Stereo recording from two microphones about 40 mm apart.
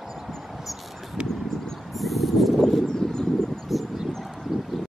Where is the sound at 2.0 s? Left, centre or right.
Centre.